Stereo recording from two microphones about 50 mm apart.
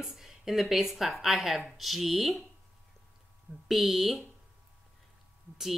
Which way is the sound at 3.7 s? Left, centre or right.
Centre.